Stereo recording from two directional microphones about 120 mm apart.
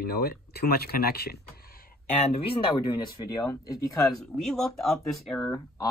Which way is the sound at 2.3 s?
50° left (ahead or behind).